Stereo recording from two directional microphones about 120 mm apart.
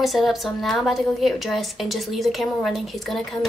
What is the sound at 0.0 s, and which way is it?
A woman's voice, centre (ahead or behind).